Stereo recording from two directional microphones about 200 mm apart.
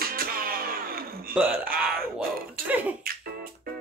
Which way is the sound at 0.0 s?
45° right (ahead or behind).